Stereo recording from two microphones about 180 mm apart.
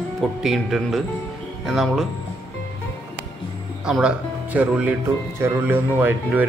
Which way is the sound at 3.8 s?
5° right (ahead or behind).